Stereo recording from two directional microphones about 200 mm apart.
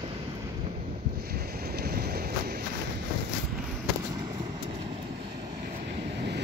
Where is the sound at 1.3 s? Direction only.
50° right (ahead or behind).